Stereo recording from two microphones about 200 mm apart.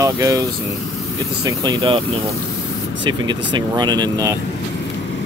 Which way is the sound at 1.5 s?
20° right (ahead or behind).